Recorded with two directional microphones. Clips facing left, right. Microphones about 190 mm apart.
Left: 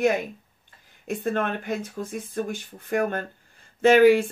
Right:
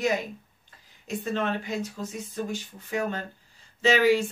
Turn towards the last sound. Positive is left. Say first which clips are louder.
# left 6 dB
turn(degrees=55)  # may be behind; listen again after turning